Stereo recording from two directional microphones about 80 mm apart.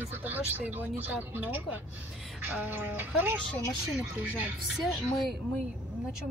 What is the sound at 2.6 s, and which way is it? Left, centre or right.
Speech, right.